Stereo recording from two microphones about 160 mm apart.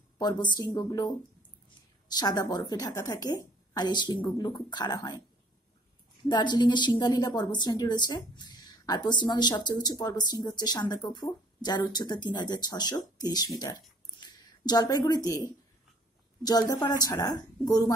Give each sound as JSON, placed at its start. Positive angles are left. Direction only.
{"t": 0.2, "sound": "a woman's voice", "side_deg": 25}
{"t": 6.2, "sound": "a woman's voice", "side_deg": 30}
{"t": 16.4, "sound": "a woman's voice", "side_deg": 25}